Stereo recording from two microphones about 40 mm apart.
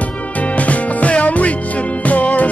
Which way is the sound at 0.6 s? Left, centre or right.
Left.